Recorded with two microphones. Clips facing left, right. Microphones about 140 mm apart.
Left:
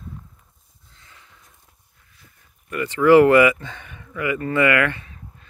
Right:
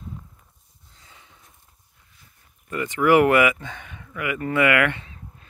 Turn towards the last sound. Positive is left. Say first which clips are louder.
# left 1 dB
turn(degrees=-15)  # may be behind; listen again after turning